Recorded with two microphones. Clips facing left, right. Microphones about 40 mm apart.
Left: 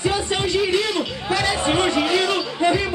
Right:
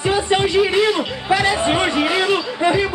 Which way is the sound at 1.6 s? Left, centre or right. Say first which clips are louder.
Right 2 dB; centre.